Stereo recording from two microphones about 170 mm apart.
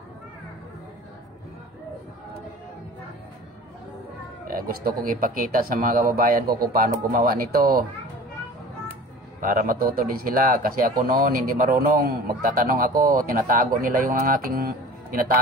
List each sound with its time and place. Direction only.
4.5 s speech: 55° right (ahead or behind)
9.4 s speech: 55° right (ahead or behind)